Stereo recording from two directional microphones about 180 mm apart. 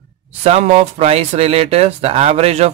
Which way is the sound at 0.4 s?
35° right (ahead or behind).